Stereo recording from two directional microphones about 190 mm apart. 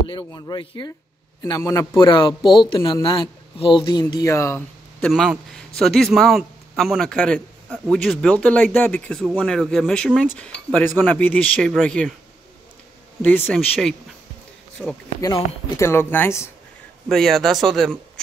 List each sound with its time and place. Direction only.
0.3 s a man's voice: 25° left (ahead or behind); by 12.2 s 5° left (ahead or behind)
13.2 s speech: 10° left (ahead or behind)
15.7 s speech: 15° left (ahead or behind)
17.1 s speech: centre (ahead or behind)